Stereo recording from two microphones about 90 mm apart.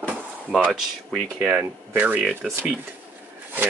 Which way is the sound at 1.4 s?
20° right (ahead or behind).